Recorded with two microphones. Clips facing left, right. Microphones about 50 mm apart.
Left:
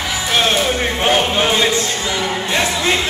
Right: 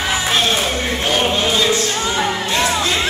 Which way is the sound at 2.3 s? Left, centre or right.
Left.